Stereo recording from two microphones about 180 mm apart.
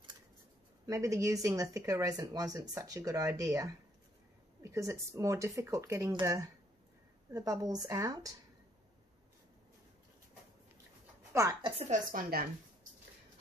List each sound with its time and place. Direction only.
0.8 s speech: 15° right (ahead or behind)
11.3 s speech: 20° right (ahead or behind)
11.8 s a woman's voice: 45° right (ahead or behind)